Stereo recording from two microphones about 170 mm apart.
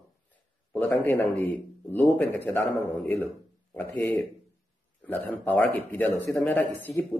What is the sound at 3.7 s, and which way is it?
Speech, 10° left (ahead or behind).